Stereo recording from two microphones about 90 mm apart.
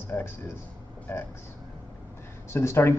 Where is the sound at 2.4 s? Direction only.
30° left (ahead or behind).